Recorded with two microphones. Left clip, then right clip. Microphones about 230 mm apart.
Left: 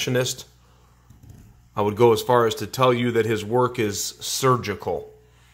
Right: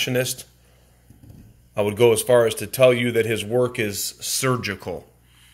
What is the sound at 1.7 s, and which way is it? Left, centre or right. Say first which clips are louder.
Speech: even; left.